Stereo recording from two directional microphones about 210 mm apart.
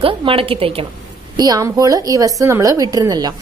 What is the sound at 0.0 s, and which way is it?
A woman's voice, 25° right (ahead or behind).